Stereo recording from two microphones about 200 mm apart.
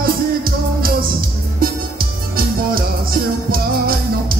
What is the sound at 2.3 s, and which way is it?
Music, 45° right (ahead or behind).